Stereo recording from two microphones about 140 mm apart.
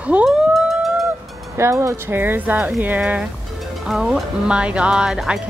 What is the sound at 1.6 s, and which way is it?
Speech, 20° right (ahead or behind).